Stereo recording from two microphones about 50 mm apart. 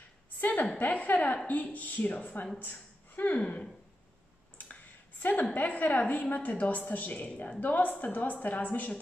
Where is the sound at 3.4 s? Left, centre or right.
Left.